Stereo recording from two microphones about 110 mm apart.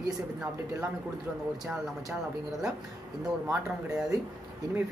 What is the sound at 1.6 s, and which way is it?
Speech, 5° right (ahead or behind).